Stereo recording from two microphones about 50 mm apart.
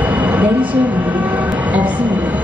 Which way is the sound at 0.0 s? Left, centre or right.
Right.